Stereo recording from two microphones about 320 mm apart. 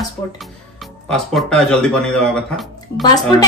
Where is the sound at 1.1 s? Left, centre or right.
Centre.